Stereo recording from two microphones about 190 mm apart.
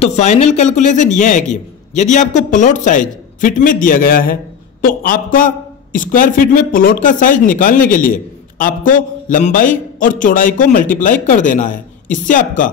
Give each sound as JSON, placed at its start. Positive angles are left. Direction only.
{"t": 0.0, "sound": "a man's voice", "side_deg": 35}